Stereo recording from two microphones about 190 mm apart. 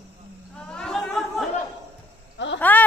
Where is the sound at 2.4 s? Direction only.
70° left (ahead or behind).